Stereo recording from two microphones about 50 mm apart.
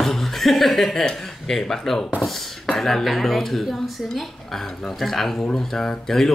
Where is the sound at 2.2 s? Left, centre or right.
Centre.